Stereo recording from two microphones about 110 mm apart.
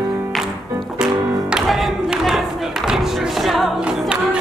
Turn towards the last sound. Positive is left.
turn(degrees=-10)  # may be behind; listen again after turning